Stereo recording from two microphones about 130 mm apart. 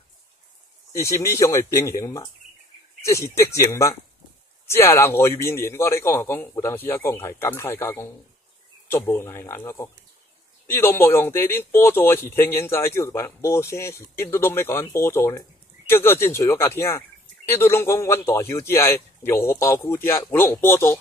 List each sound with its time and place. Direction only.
0.9 s speech: 25° left (ahead or behind)